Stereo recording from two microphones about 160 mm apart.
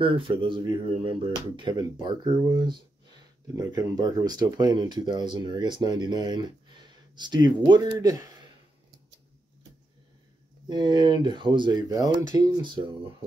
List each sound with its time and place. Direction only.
0.0 s speech: 30° right (ahead or behind)
10.7 s speech: 25° right (ahead or behind)